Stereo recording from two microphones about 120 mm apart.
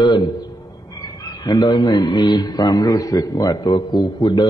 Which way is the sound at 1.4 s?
35° left (ahead or behind).